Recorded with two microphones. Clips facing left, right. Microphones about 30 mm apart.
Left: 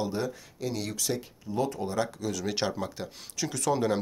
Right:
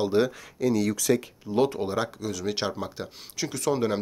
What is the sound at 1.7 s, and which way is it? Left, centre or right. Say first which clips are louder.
Speech: right 2 dB; right.